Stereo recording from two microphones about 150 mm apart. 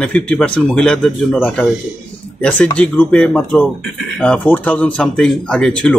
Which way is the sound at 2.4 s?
10° left (ahead or behind).